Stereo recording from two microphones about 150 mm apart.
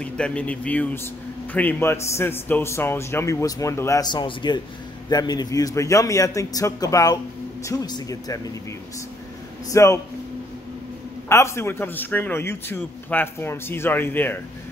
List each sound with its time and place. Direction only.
0.0 s a man's voice: 10° left (ahead or behind); by 8.4 s 25° left (ahead or behind)
9.7 s a man's voice: 20° left (ahead or behind)
11.2 s a man's voice: 20° left (ahead or behind)